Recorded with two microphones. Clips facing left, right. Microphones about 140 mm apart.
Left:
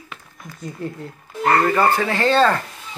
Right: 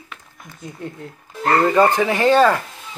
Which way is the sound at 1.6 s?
20° right (ahead or behind).